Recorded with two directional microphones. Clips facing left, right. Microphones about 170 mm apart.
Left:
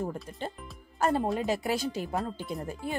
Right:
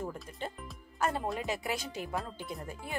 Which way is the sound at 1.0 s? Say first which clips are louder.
Left 6 dB; 30° left (ahead or behind).